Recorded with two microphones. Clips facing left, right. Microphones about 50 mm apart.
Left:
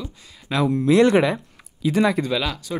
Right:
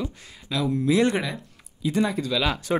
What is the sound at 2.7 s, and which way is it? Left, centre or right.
Speech, right.